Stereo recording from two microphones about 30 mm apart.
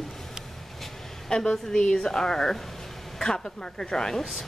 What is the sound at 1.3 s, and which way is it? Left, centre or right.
Speech, left.